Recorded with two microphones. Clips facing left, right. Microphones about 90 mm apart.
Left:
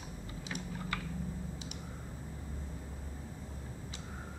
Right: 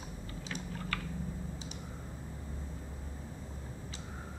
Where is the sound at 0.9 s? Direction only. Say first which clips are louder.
Even; 15° left (ahead or behind).